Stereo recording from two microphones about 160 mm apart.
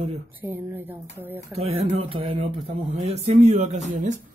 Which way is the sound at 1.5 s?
40° right (ahead or behind).